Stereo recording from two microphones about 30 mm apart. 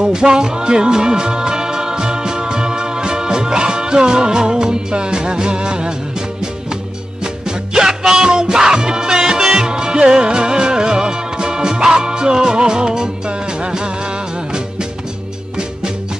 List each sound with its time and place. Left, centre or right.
0.0 s music: right
7.4 s music: right
9.4 s music: centre
9.7 s music: right